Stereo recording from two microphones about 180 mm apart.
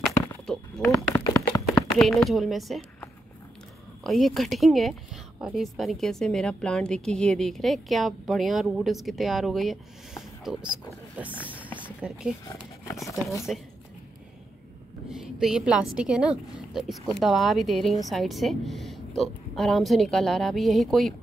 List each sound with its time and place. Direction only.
0.5 s a sound: 5° left (ahead or behind)
1.1 s tap: 20° left (ahead or behind)
2.0 s speech: centre (ahead or behind)
12.8 s speech: 15° left (ahead or behind)
13.5 s speech: centre (ahead or behind)
15.0 s a woman's voice: 5° right (ahead or behind)